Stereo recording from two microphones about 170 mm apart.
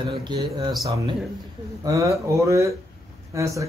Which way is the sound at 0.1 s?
25° right (ahead or behind).